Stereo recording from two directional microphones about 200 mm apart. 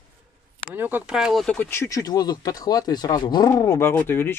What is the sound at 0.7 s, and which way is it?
Speech, 10° right (ahead or behind).